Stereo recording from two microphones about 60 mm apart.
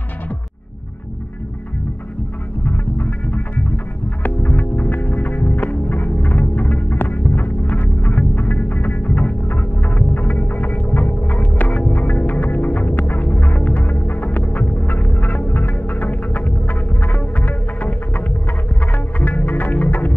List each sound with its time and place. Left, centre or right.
2.6 s music: left
6.9 s hum: left
19.1 s music: left